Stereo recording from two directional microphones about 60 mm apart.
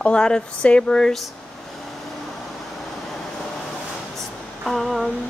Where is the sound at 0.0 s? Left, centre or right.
Centre.